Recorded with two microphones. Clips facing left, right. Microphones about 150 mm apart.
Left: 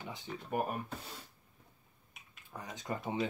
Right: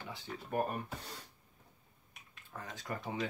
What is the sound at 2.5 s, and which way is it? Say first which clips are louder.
Speech: left 2 dB; 15° left (ahead or behind).